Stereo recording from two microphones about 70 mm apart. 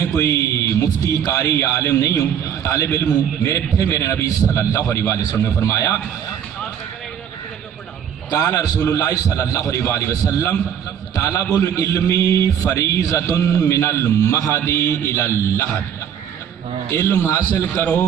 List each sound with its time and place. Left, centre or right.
0.0 s a man's voice: left
8.5 s a man's voice: left
14.2 s a man's voice: left
17.1 s a man's voice: left